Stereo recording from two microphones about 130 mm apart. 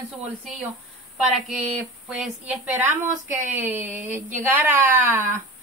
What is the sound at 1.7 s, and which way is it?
A woman's voice, 10° right (ahead or behind).